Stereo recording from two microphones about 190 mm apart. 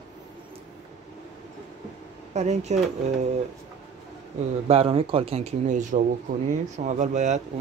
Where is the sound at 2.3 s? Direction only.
35° right (ahead or behind).